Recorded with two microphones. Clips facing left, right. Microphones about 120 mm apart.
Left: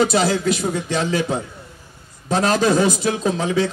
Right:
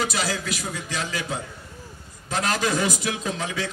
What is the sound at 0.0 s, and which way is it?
A man's voice, 30° left (ahead or behind).